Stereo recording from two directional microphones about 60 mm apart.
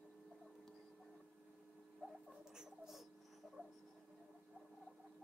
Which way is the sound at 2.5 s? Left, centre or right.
Centre.